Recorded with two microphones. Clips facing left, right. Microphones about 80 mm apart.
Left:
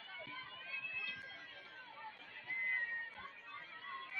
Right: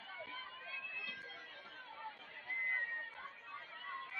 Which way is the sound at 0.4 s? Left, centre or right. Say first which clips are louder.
Right 1 dB; centre.